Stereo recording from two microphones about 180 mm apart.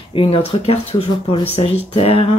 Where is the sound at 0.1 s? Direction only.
30° left (ahead or behind).